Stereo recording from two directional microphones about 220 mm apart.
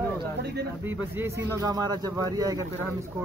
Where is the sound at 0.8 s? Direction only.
10° right (ahead or behind).